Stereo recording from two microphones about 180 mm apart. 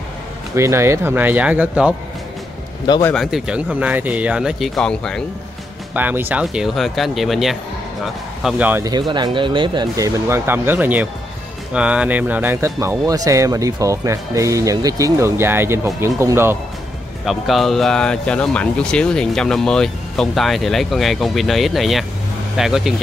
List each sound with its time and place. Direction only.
0.6 s speech: 15° right (ahead or behind)
3.1 s speech: centre (ahead or behind)
5.9 s speech: 10° right (ahead or behind)
8.9 s speech: 25° right (ahead or behind)
17.2 s speech: centre (ahead or behind)